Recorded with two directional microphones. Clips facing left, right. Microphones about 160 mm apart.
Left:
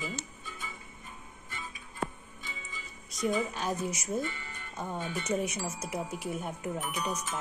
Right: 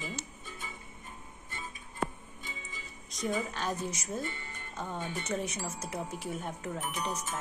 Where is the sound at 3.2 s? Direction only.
10° left (ahead or behind).